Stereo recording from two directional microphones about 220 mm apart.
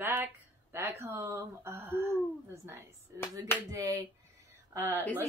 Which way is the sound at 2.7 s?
10° right (ahead or behind).